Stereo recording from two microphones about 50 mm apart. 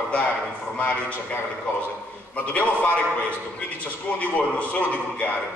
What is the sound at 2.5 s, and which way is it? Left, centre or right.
Speech, left.